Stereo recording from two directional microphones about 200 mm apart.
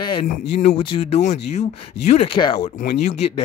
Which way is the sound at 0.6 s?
30° left (ahead or behind).